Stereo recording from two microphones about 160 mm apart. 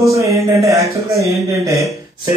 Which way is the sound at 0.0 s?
20° right (ahead or behind).